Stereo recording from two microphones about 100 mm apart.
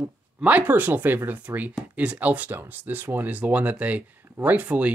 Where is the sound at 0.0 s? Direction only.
15° right (ahead or behind).